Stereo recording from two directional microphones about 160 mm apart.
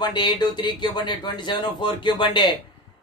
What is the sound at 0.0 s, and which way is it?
Speech, 25° left (ahead or behind).